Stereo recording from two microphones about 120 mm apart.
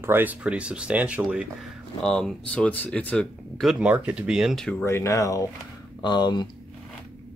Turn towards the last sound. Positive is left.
turn(degrees=40)  # may be behind; listen again after turning